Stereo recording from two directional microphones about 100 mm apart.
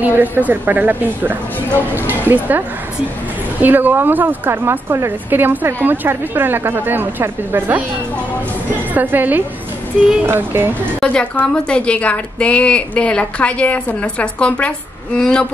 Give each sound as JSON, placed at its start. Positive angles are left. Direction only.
{"t": 0.0, "sound": "a woman's voice", "side_deg": -20}
{"t": 3.6, "sound": "speech", "side_deg": -20}
{"t": 8.9, "sound": "speech", "side_deg": -20}
{"t": 11.0, "sound": "a woman's voice", "side_deg": 15}